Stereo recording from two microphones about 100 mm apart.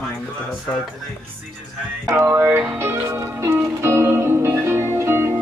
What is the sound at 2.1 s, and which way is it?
Music, 25° right (ahead or behind).